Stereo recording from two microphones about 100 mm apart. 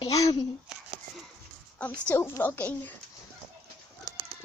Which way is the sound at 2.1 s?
25° left (ahead or behind).